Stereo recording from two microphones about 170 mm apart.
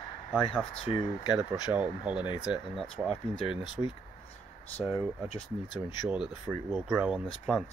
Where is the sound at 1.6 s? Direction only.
5° right (ahead or behind).